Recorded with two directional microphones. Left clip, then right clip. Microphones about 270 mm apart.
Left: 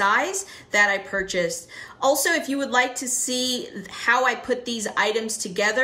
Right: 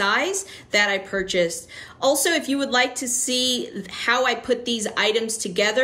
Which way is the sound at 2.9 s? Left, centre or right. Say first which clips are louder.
Right 1 dB; centre.